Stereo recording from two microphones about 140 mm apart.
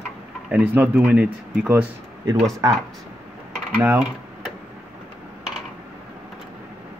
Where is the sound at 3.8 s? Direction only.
10° right (ahead or behind).